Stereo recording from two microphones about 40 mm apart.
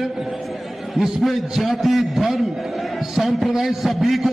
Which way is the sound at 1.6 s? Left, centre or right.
Centre.